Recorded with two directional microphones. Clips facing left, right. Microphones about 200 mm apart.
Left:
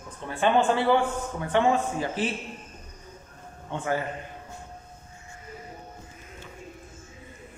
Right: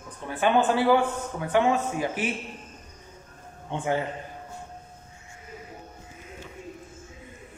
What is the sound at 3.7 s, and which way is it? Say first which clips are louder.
Speech: right 1 dB; 20° right (ahead or behind).